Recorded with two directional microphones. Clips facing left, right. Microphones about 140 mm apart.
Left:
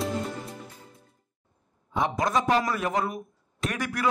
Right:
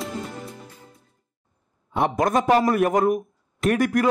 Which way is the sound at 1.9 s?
60° right (ahead or behind).